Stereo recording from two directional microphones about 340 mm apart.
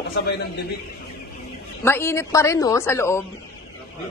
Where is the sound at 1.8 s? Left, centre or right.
Centre.